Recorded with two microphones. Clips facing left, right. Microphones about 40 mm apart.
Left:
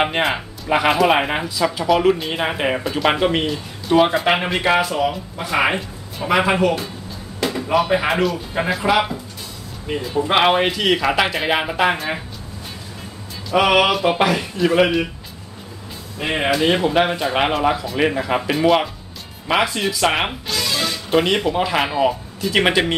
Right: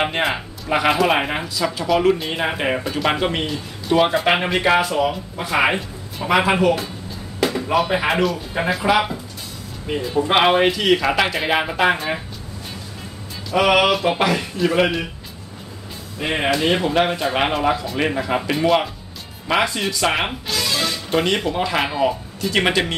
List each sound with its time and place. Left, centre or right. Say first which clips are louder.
0.0 s speech: left 2 dB; centre
13.5 s speech: left 1 dB; centre
16.2 s speech: left 1 dB; centre